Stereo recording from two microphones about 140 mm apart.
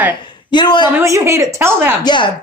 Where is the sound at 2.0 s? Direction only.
30° left (ahead or behind).